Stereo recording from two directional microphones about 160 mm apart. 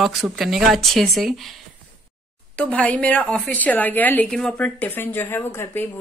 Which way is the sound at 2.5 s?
10° left (ahead or behind).